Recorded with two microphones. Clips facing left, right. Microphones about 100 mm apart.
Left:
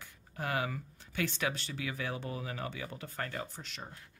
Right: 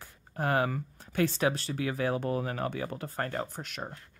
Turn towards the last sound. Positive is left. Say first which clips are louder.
# right 6 dB
turn(degrees=-55)  # may be behind; listen again after turning